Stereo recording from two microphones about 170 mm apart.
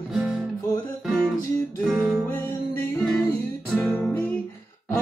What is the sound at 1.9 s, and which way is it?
Music, 10° right (ahead or behind).